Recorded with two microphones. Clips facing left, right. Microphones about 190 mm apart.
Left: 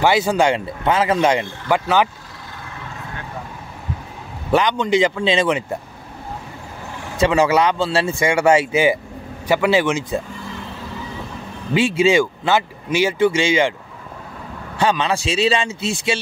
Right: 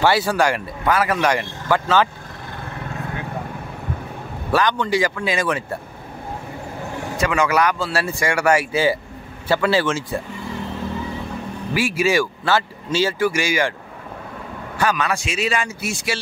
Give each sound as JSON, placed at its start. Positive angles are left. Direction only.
{"t": 0.0, "sound": "speech", "side_deg": 20}
{"t": 4.5, "sound": "speech", "side_deg": 20}
{"t": 7.2, "sound": "a man's voice", "side_deg": 25}
{"t": 11.7, "sound": "speech", "side_deg": 20}
{"t": 14.8, "sound": "speech", "side_deg": 25}